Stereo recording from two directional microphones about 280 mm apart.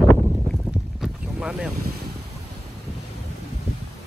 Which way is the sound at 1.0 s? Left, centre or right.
Centre.